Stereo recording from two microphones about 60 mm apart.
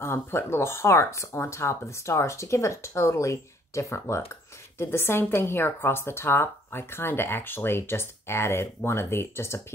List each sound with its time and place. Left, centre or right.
0.0 s speech: left
4.7 s speech: left